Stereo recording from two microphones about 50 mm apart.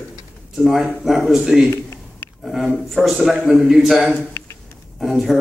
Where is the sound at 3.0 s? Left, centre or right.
Centre.